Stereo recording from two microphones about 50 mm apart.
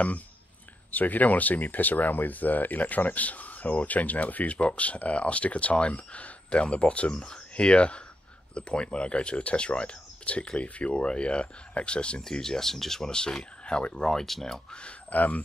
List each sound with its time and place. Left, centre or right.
0.9 s speech: left
12.3 s speech: centre
15.0 s speech: left